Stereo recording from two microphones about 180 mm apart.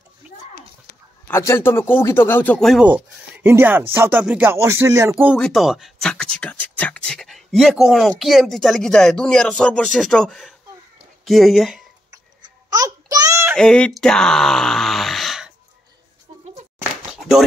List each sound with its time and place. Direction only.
1.2 s speech: 15° left (ahead or behind)
2.9 s speech: 10° right (ahead or behind)
5.4 s speech: centre (ahead or behind)
12.6 s a sound: 20° right (ahead or behind)
13.6 s speech: 5° left (ahead or behind)